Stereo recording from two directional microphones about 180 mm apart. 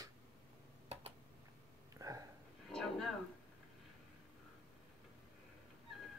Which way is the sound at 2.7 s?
Centre (ahead or behind).